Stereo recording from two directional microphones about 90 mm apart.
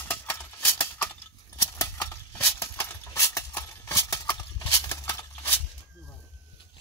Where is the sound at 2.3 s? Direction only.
20° left (ahead or behind).